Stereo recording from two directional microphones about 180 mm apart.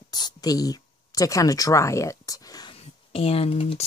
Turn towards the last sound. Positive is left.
turn(degrees=30)  # may be behind; listen again after turning